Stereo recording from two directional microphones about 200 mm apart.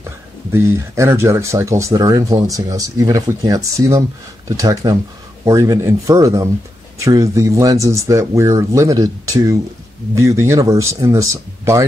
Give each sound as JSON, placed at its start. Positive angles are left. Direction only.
{"t": 0.0, "sound": "speech", "side_deg": -10}